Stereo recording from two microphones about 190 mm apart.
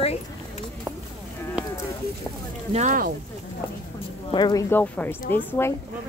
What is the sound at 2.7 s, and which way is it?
Speech, 40° right (ahead or behind).